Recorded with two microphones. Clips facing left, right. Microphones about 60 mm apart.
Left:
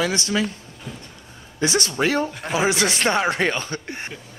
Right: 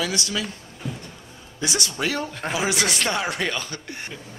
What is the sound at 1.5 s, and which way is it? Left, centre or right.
A man's voice, left.